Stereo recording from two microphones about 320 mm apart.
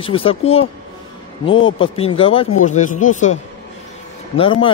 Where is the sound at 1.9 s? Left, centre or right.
Centre.